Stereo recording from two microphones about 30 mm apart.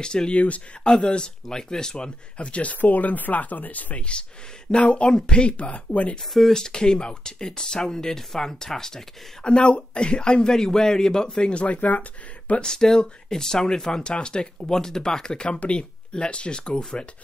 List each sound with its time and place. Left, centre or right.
0.0 s speech: left
0.3 s speech: left
0.8 s speech: left
2.3 s speech: left
2.8 s speech: left
4.6 s speech: left
5.5 s speech: left
6.5 s speech: left
9.4 s speech: left
11.6 s speech: left
12.6 s speech: centre
14.7 s speech: centre